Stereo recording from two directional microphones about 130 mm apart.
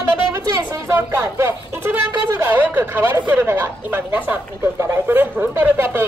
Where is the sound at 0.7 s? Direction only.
20° right (ahead or behind).